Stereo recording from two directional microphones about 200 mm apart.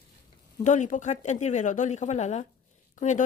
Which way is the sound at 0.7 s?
40° left (ahead or behind).